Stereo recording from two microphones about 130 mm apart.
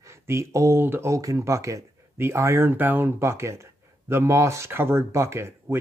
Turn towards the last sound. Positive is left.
turn(degrees=-20)  # may be behind; listen again after turning